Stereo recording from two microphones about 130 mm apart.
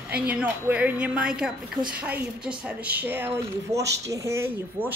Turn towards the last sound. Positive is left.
turn(degrees=-15)  # may be behind; listen again after turning